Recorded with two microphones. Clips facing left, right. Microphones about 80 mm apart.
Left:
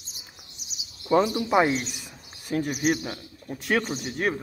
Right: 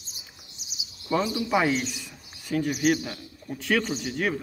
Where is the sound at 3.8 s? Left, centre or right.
Left.